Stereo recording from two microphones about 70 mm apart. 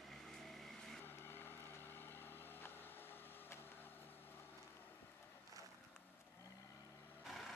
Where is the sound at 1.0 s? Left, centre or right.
Left.